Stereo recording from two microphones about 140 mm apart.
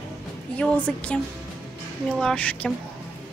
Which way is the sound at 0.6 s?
10° left (ahead or behind).